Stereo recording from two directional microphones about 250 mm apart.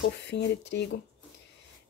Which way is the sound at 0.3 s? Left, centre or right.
Left.